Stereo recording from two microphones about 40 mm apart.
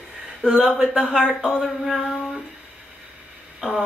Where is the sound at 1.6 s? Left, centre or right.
Centre.